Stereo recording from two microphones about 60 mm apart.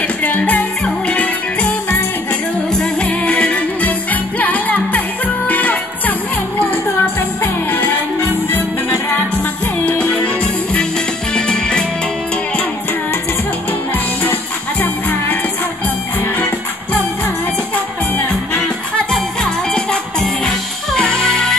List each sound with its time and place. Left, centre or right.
0.2 s music: left
2.7 s music: centre; by 8.6 s left
9.8 s music: centre
14.2 s music: left
19.1 s music: centre